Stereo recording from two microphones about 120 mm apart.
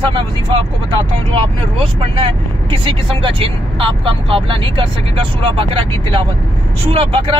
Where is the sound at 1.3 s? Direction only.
50° right (ahead or behind).